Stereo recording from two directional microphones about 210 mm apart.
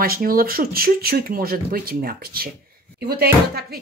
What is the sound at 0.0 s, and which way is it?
Speech, 45° right (ahead or behind).